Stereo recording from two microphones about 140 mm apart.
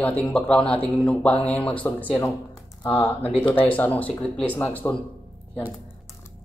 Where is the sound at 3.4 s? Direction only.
40° left (ahead or behind).